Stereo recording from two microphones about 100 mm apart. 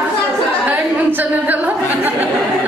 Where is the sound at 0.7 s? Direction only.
15° right (ahead or behind).